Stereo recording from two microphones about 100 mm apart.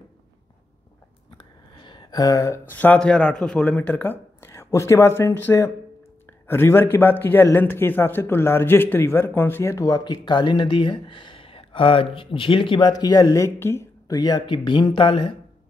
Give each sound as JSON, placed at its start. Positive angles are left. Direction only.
{"t": 1.4, "sound": "a sound", "side_deg": 50}
{"t": 2.7, "sound": "a man's voice", "side_deg": 15}
{"t": 12.8, "sound": "a man's voice", "side_deg": 40}
{"t": 14.1, "sound": "speech", "side_deg": 40}